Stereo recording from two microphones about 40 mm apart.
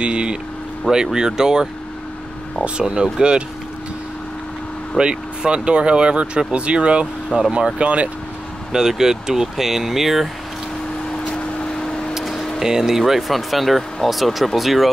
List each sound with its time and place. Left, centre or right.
0.0 s speech: right
2.8 s speech: right
4.9 s speech: right
8.7 s speech: centre
11.1 s vehicle: centre
12.5 s speech: centre